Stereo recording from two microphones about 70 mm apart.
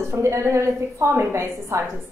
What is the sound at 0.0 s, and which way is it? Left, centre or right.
A woman's voice, right.